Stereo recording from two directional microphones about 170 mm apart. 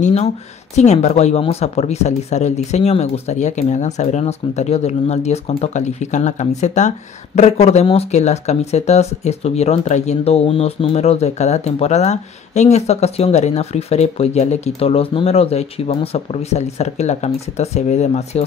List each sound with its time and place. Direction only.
0.0 s speech: 40° left (ahead or behind)